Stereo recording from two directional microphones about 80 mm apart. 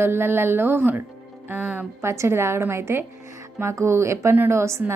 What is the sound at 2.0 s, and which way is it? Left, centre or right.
A woman's voice, right.